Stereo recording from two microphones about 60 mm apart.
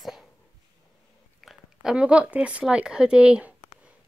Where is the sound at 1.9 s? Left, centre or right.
Centre.